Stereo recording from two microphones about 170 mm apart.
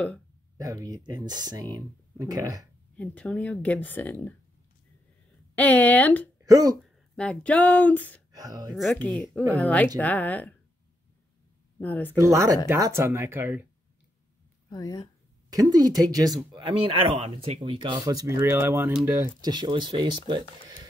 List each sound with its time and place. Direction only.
0.6 s speech: 20° right (ahead or behind)
3.0 s speech: 5° left (ahead or behind)
5.6 s speech: 10° left (ahead or behind)
6.3 s a sound: 20° right (ahead or behind)
6.8 s a sound: 5° left (ahead or behind)
8.3 s speech: 20° right (ahead or behind)
8.9 s speech: 10° left (ahead or behind)
11.8 s speech: 10° left (ahead or behind)
12.2 s speech: 20° right (ahead or behind)
14.7 s speech: 20° left (ahead or behind)
15.5 s speech: 20° right (ahead or behind)